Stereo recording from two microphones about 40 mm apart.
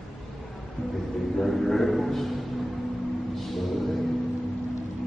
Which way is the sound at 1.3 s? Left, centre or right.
Centre.